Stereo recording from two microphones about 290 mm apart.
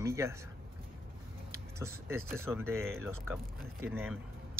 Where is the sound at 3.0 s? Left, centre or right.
Centre.